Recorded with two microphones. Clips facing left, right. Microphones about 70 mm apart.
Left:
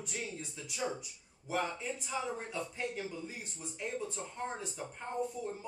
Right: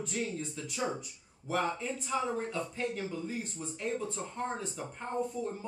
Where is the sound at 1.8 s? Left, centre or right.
Centre.